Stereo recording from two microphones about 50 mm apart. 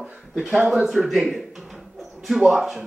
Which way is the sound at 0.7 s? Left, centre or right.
Centre.